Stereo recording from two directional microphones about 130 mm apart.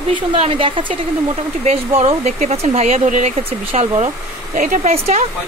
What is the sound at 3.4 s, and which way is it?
Speech, 50° right (ahead or behind).